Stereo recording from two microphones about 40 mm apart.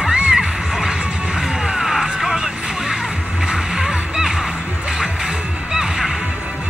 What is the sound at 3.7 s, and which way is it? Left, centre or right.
Music, centre.